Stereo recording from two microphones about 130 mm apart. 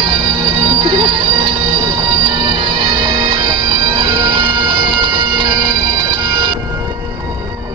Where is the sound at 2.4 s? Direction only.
40° right (ahead or behind).